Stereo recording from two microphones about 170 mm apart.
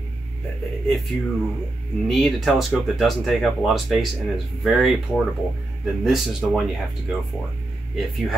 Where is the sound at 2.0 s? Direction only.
Centre (ahead or behind).